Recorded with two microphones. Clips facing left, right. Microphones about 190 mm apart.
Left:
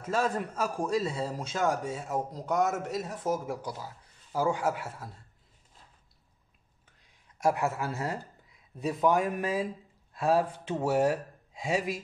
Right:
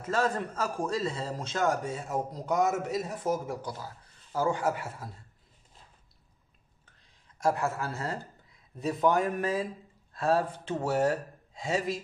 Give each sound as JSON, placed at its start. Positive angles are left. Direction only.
{"t": 0.1, "sound": "a man's voice", "side_deg": 10}
{"t": 7.7, "sound": "a man's voice", "side_deg": 20}
{"t": 8.7, "sound": "a man's voice", "side_deg": 5}